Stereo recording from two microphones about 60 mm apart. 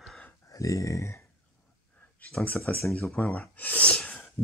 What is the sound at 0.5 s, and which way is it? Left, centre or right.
Speech, left.